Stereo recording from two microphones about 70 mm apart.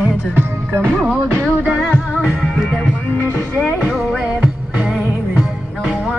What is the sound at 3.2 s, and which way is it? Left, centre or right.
Music, left.